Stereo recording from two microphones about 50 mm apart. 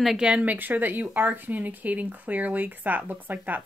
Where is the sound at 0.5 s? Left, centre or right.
Right.